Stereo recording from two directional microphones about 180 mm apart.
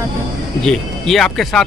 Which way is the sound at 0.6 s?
5° left (ahead or behind).